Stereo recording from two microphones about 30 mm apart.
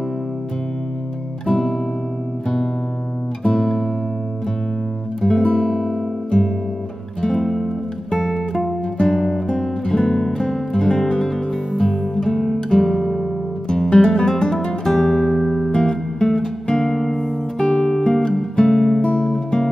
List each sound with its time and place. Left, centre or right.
1.5 s music: centre
3.4 s music: centre
5.3 s music: left
7.2 s music: left
7.4 s music: centre
9.1 s music: centre
9.9 s music: centre
13.9 s music: left; by 15.7 s centre
15.7 s music: left
16.7 s music: centre
18.9 s music: left
19.2 s music: left